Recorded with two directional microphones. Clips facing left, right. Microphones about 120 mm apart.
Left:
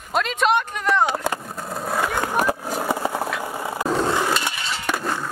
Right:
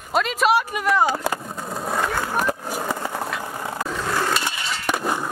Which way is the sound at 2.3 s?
10° left (ahead or behind).